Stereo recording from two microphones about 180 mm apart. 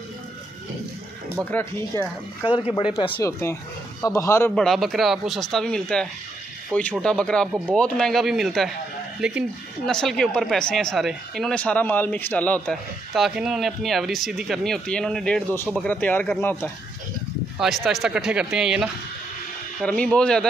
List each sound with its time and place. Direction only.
1.4 s speech: 10° left (ahead or behind)
4.6 s speech: centre (ahead or behind)
17.6 s speech: centre (ahead or behind)